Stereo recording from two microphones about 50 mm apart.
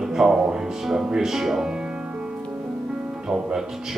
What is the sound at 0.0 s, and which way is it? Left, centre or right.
Speech, centre.